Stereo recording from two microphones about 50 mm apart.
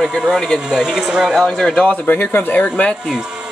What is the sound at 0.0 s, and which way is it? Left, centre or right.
Speech, centre.